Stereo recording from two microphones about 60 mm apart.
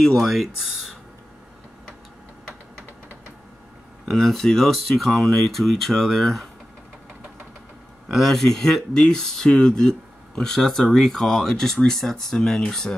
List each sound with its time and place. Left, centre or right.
0.0 s speech: centre
4.1 s speech: centre
8.1 s speech: centre